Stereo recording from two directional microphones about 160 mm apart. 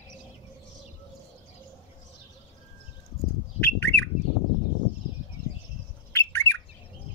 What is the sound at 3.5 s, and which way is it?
Bird, 10° left (ahead or behind).